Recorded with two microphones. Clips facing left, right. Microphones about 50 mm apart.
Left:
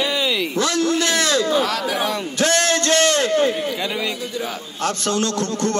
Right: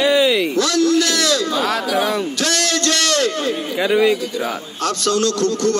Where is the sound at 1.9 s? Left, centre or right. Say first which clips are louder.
Right 4 dB; centre.